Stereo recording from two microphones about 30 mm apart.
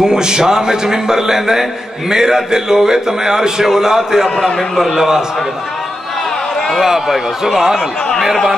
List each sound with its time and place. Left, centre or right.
0.0 s a man's voice: right
6.8 s a man's voice: centre